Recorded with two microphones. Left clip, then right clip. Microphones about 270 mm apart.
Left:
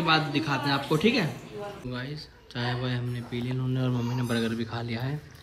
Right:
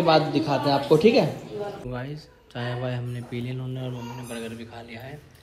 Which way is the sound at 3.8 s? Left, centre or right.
Centre.